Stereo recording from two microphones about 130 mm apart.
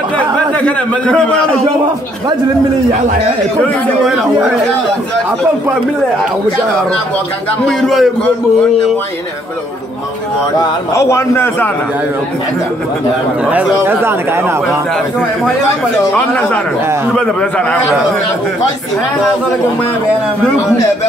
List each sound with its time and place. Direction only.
0.7 s a man's voice: 10° left (ahead or behind)
7.6 s a man's voice: centre (ahead or behind)
11.0 s a man's voice: 20° left (ahead or behind)
13.5 s speech: 15° right (ahead or behind)
16.2 s a man's voice: 10° left (ahead or behind)